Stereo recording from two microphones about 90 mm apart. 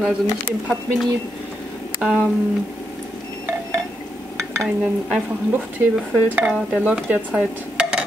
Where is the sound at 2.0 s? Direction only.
10° right (ahead or behind).